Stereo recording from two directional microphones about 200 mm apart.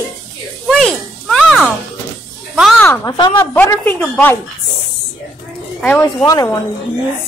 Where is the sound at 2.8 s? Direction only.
10° left (ahead or behind).